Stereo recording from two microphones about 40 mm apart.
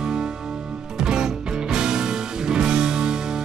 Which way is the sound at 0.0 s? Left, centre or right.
Centre.